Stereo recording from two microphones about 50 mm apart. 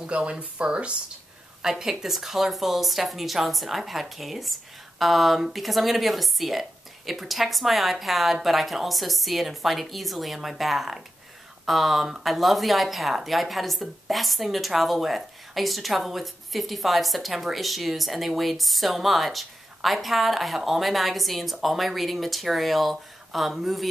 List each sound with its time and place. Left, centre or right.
0.0 s speech: right
1.6 s a woman's voice: centre